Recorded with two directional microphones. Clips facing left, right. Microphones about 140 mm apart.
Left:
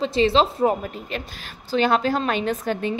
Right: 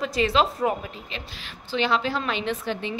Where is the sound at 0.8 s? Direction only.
50° left (ahead or behind).